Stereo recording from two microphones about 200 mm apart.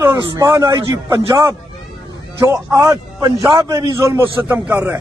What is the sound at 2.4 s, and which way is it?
A man's voice, 15° right (ahead or behind).